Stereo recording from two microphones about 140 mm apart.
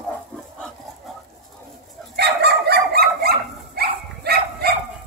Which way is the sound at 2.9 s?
90° right.